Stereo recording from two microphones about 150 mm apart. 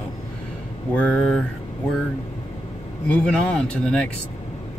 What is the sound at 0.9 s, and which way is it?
Speech, 5° left (ahead or behind).